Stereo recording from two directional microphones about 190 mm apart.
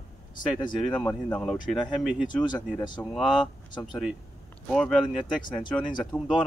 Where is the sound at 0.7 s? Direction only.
5° left (ahead or behind).